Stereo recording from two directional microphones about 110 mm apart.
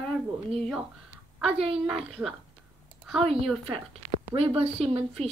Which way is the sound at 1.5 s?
65° right (ahead or behind).